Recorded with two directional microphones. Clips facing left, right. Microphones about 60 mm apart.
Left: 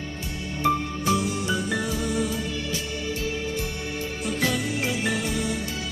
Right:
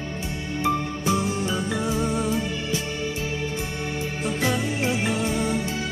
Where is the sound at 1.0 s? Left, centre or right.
Right.